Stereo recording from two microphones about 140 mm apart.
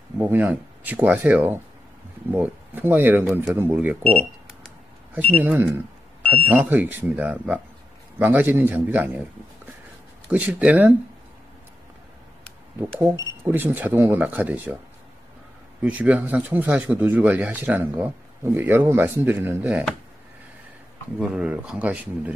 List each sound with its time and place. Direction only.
0.2 s speech: 10° right (ahead or behind)
5.4 s speech: 15° right (ahead or behind)
10.3 s speech: 10° right (ahead or behind)
13.0 s speech: 15° right (ahead or behind)
15.8 s speech: 10° right (ahead or behind)
21.2 s speech: 5° right (ahead or behind)